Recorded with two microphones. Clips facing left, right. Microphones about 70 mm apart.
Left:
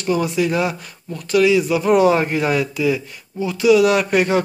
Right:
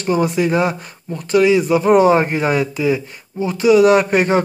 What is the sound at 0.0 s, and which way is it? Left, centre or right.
Speech, right.